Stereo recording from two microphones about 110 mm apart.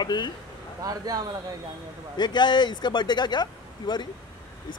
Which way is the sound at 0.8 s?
35° right (ahead or behind).